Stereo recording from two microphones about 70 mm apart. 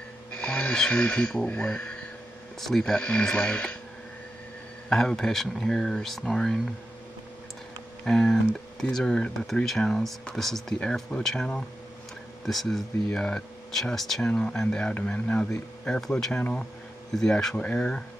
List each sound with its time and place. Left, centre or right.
0.3 s speech: centre
3.0 s speech: centre
4.8 s speech: centre
8.0 s speech: centre